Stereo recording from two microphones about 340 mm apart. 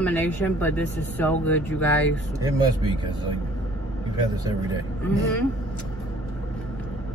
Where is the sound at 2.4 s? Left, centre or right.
Centre.